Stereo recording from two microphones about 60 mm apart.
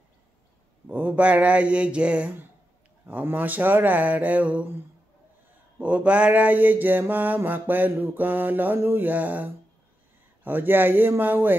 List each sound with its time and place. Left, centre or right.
0.8 s mantra: right
3.1 s mantra: right
5.8 s mantra: right
10.4 s speech: right